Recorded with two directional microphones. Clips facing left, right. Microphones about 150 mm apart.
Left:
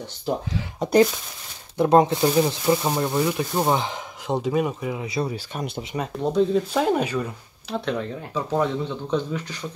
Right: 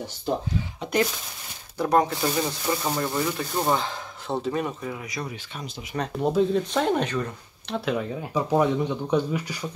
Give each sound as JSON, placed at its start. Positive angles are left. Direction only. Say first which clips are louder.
{"t": 1.8, "sound": "speech", "louder": "left 5 dB", "side_deg": 20}
{"t": 5.0, "sound": "speech", "louder": "left 7 dB", "side_deg": 30}
{"t": 6.1, "sound": "speech", "louder": "left 1 dB", "side_deg": -5}
{"t": 7.7, "sound": "speech", "louder": "even", "side_deg": -5}